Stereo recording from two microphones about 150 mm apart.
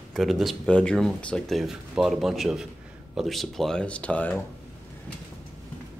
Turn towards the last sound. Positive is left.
turn(degrees=10)  # may be behind; listen again after turning